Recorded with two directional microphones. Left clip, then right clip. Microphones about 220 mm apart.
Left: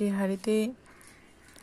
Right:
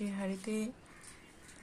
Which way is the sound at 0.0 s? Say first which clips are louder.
Left 10 dB; 40° left (ahead or behind).